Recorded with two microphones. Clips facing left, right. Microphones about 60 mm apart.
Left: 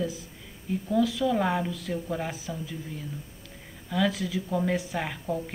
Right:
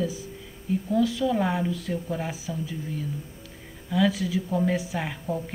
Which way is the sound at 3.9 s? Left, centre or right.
Centre.